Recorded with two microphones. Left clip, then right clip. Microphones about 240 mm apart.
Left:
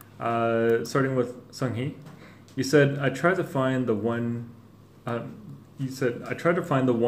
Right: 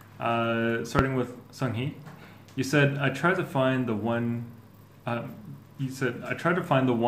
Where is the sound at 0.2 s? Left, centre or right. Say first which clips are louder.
Left 2 dB; centre.